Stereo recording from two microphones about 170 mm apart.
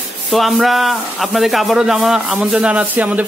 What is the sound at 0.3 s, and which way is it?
Speech, centre (ahead or behind).